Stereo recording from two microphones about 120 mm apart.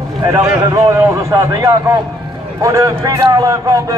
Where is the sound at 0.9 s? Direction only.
25° right (ahead or behind).